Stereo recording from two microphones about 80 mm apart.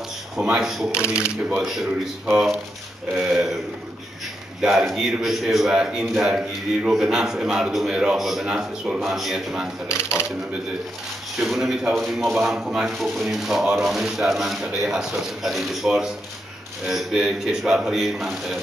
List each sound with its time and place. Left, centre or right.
0.4 s a man's voice: centre
4.6 s a man's voice: centre
9.8 s speech: left
11.3 s a man's voice: centre